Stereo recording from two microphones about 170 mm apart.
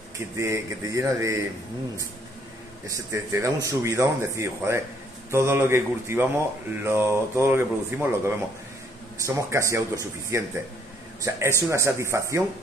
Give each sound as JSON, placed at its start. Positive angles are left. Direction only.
{"t": 0.4, "sound": "speech", "side_deg": -15}
{"t": 2.9, "sound": "speech", "side_deg": -15}
{"t": 9.2, "sound": "speech", "side_deg": -15}